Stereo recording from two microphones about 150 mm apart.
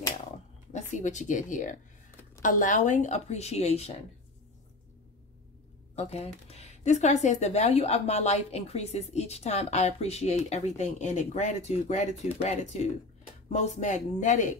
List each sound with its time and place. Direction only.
0.7 s speech: 55° left (ahead or behind)
5.9 s speech: 45° left (ahead or behind)